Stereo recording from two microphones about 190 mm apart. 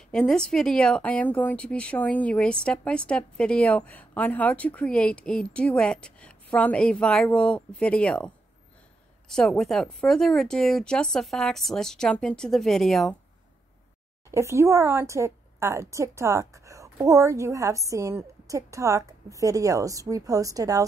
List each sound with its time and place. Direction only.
0.1 s speech: 5° left (ahead or behind)
9.3 s speech: centre (ahead or behind)
14.3 s speech: 15° right (ahead or behind)